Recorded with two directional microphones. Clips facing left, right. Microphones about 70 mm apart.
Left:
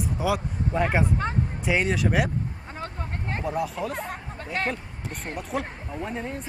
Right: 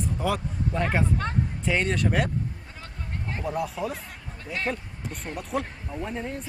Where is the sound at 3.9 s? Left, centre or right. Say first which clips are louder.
Left 6 dB; left.